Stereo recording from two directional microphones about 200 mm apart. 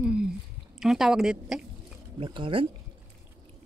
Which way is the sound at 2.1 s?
25° right (ahead or behind).